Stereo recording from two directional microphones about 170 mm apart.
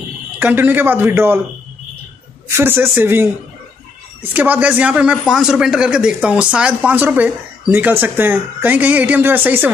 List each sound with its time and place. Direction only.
0.4 s speech: 10° right (ahead or behind)
2.5 s speech: 15° right (ahead or behind)